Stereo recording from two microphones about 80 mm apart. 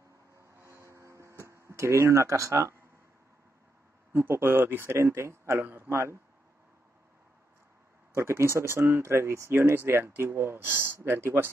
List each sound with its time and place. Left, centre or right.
0.6 s a sound: right
4.1 s speech: right
8.1 s speech: right